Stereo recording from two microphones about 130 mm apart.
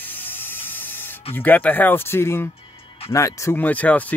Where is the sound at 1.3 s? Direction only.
15° left (ahead or behind).